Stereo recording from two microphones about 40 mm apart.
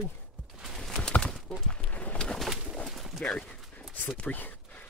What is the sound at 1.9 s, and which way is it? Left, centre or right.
Bird, left.